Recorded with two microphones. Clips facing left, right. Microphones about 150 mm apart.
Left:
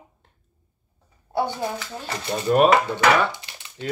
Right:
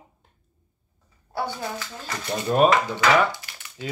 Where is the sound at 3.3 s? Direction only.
20° left (ahead or behind).